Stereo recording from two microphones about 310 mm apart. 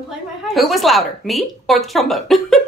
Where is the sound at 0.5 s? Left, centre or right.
Centre.